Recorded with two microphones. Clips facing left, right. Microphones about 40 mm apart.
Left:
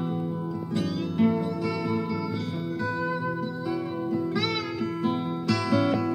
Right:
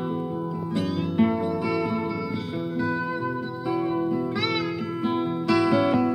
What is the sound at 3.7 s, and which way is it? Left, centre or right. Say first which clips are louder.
Music: right 6 dB; centre.